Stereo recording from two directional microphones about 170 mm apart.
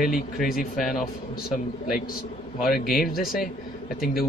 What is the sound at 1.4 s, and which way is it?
Speech, 60° left (ahead or behind).